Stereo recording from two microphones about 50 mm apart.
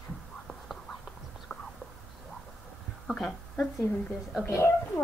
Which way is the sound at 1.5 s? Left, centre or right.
Centre.